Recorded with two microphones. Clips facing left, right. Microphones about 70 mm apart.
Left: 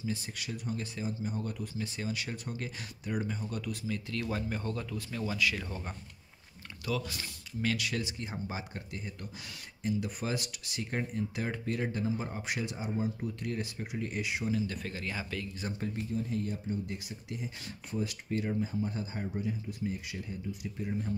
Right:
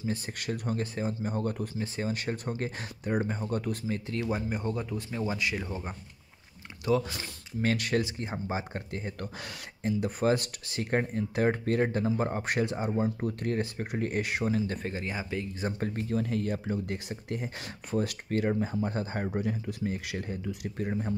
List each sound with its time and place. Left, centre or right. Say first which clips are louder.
0.0 s speech: right 4 dB; right
7.2 s speech: right 4 dB; right
14.7 s speech: right 4 dB; right
15.8 s speech: right 4 dB; right
16.1 s speech: right 6 dB; right